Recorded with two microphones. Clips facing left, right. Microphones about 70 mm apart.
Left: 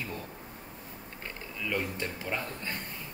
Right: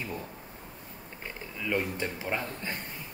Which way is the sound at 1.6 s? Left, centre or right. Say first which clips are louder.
Right 3 dB; right.